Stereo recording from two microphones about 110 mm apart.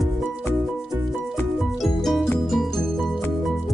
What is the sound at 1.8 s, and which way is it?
Music, centre (ahead or behind).